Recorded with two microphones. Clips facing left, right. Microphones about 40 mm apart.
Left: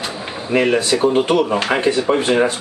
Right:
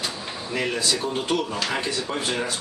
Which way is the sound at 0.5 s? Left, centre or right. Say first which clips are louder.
Left 10 dB; left.